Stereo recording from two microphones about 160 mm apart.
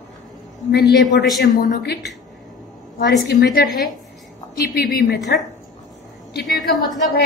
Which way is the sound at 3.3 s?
90° left.